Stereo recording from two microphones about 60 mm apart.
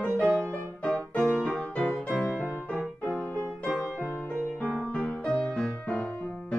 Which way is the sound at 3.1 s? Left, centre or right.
Centre.